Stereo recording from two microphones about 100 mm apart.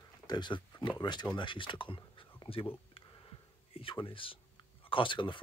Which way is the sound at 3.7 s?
60° left (ahead or behind).